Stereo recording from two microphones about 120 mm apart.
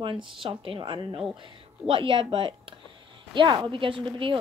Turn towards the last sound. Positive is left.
turn(degrees=-45)  # may be behind; listen again after turning